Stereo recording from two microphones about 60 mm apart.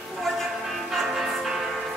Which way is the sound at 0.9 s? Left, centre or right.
Centre.